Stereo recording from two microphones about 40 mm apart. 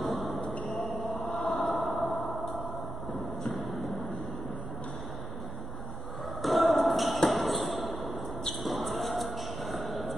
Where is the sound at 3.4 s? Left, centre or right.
Centre.